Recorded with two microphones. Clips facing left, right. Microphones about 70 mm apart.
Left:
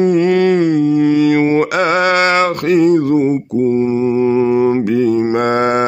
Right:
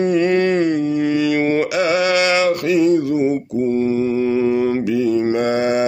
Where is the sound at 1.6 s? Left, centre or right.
Left.